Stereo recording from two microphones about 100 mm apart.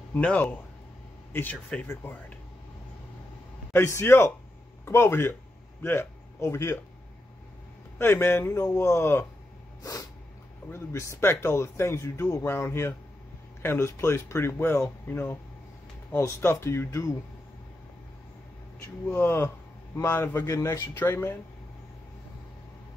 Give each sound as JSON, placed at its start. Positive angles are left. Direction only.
{"t": 0.1, "sound": "speech", "side_deg": 15}
{"t": 3.7, "sound": "speech", "side_deg": 30}
{"t": 8.0, "sound": "speech", "side_deg": 25}
{"t": 10.7, "sound": "speech", "side_deg": 30}
{"t": 18.8, "sound": "speech", "side_deg": 20}